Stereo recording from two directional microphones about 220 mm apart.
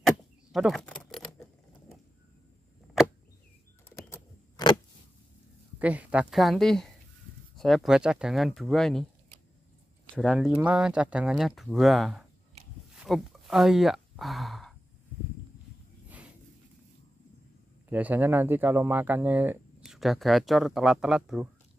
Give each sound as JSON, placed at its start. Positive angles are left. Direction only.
{"t": 0.0, "sound": "keys jangling", "side_deg": 0}
{"t": 4.1, "sound": "keys jangling", "side_deg": 20}
{"t": 5.8, "sound": "speech", "side_deg": -5}
{"t": 10.1, "sound": "speech", "side_deg": 0}
{"t": 13.0, "sound": "sigh", "side_deg": 0}
{"t": 17.8, "sound": "speech", "side_deg": -5}